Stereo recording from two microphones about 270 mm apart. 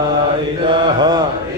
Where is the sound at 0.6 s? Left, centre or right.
Centre.